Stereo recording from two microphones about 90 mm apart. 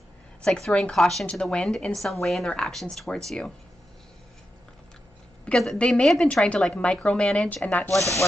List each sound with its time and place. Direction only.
0.4 s a woman's voice: 5° left (ahead or behind)
5.4 s a woman's voice: 5° left (ahead or behind)
7.9 s speech: 35° left (ahead or behind)